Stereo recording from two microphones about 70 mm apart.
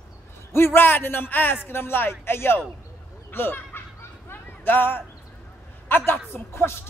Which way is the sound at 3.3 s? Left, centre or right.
Left.